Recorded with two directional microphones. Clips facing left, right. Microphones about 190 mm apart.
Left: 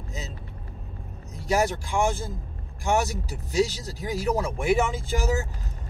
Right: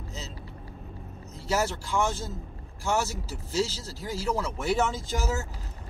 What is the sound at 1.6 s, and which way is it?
Speech, 15° left (ahead or behind).